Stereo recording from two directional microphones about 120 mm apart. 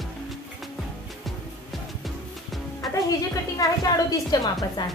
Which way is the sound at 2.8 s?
30° left (ahead or behind).